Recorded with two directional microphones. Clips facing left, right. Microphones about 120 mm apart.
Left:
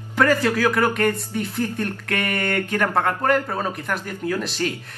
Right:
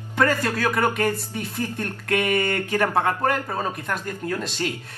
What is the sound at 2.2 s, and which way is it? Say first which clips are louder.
Speech: left 1 dB; 15° right (ahead or behind).